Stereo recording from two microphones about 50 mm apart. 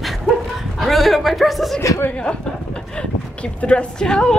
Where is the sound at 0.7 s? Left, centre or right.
Centre.